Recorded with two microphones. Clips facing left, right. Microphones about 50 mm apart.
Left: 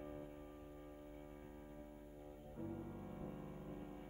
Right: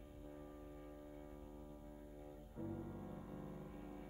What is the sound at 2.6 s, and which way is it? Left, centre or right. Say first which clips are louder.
Music: right 1 dB; centre.